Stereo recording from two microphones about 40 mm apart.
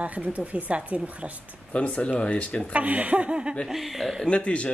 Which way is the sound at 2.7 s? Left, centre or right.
Right.